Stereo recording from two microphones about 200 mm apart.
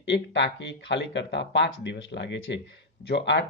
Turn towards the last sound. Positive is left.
turn(degrees=60)  # may be behind; listen again after turning